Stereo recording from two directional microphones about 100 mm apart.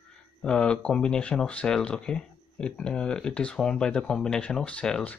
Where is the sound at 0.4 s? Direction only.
10° left (ahead or behind).